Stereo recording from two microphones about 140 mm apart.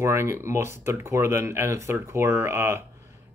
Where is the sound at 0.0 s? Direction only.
20° right (ahead or behind).